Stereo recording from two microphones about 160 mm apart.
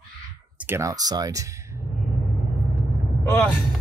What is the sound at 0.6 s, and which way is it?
Speech, 15° right (ahead or behind).